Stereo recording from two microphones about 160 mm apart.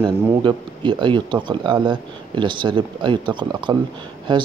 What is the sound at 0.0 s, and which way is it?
Speech, 30° right (ahead or behind).